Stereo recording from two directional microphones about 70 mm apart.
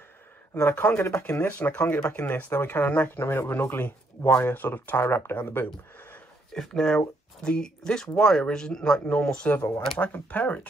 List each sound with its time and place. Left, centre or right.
0.6 s speech: left
6.5 s speech: centre